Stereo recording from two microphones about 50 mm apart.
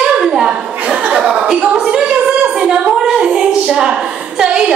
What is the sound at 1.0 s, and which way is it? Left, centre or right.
Chuckle, right.